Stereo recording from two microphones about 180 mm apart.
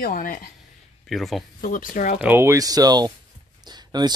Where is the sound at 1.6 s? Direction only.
50° left (ahead or behind).